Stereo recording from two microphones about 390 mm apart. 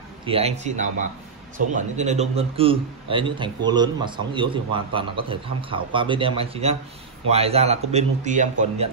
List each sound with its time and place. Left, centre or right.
0.2 s a man's voice: centre